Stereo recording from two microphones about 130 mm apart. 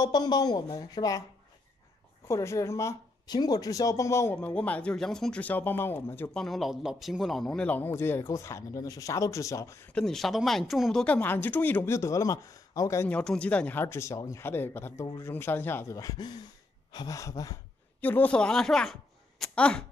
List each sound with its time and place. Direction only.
0.0 s speech: 30° left (ahead or behind)
2.2 s speech: 20° left (ahead or behind)
6.3 s speech: centre (ahead or behind); by 9.8 s 25° left (ahead or behind)
9.9 s speech: 5° left (ahead or behind); by 13.1 s 25° left (ahead or behind)
13.1 s speech: 10° left (ahead or behind); by 17.6 s 25° left (ahead or behind)
18.0 s speech: 15° left (ahead or behind)